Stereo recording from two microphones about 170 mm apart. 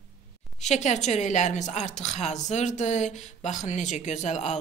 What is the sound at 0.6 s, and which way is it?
A woman's voice, 45° left (ahead or behind).